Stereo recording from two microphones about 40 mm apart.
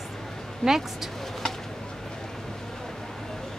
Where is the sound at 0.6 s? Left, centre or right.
Centre.